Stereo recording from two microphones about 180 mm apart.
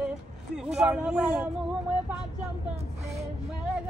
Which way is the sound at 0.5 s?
5° right (ahead or behind).